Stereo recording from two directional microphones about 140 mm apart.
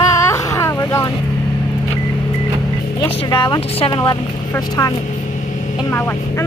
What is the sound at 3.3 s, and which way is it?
Speech, 35° left (ahead or behind).